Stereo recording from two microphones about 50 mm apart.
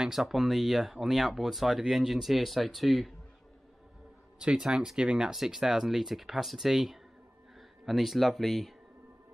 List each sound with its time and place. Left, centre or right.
0.0 s speech: centre
4.4 s speech: centre
5.3 s speech: centre